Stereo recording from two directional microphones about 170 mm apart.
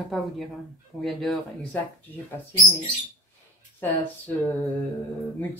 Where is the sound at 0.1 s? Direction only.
Centre (ahead or behind).